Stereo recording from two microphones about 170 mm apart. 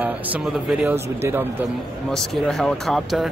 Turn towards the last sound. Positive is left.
turn(degrees=0)  # may be behind; listen again after turning